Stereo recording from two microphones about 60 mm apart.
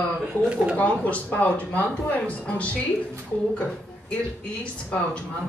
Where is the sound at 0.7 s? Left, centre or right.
Left.